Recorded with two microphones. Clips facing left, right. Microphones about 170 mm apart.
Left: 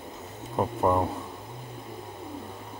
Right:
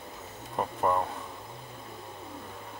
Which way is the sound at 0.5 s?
10° left (ahead or behind).